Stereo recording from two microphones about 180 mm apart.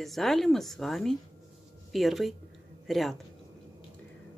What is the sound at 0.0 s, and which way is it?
A woman's voice, centre (ahead or behind).